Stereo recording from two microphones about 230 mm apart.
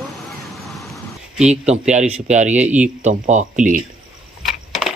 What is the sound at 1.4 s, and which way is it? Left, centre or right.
Speech, right.